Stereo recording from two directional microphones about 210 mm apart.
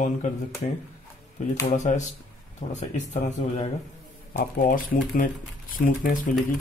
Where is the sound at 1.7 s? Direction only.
35° left (ahead or behind).